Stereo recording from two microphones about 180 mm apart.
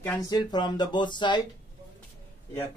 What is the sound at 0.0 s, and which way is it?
Speech, 15° left (ahead or behind).